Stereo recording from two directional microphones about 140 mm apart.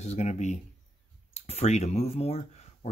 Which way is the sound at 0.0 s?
55° left (ahead or behind).